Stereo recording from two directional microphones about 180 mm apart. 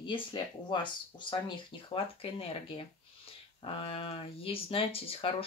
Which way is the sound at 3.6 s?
30° left (ahead or behind).